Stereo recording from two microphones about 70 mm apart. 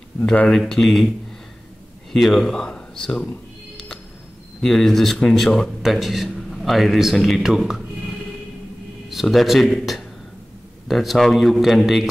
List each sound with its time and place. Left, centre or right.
0.2 s speech: centre
0.5 s a man's voice: centre
2.1 s speech: centre
4.6 s a man's voice: centre
9.1 s a man's voice: centre